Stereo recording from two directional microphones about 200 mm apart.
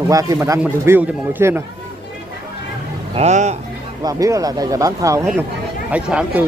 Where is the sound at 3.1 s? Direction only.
35° right (ahead or behind).